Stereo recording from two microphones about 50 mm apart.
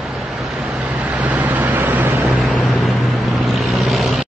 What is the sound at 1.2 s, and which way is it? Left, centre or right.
Vehicle, right.